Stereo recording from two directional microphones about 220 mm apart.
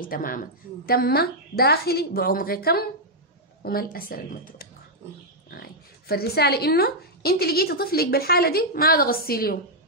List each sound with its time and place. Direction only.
0.0 s a woman's voice: 40° left (ahead or behind)
6.0 s a woman's voice: 45° left (ahead or behind)